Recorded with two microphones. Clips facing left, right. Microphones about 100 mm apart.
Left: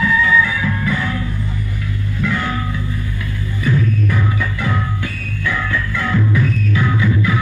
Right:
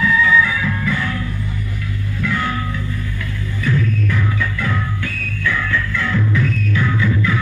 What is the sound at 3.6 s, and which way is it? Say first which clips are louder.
Music: left 2 dB; 15° left (ahead or behind).